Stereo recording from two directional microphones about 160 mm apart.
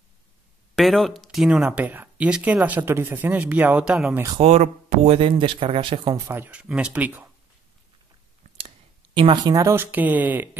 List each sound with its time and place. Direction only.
0.7 s speech: centre (ahead or behind)
4.4 s speech: 40° right (ahead or behind); by 7.2 s 10° right (ahead or behind)
8.5 s speech: 35° right (ahead or behind); by 10.6 s 10° right (ahead or behind)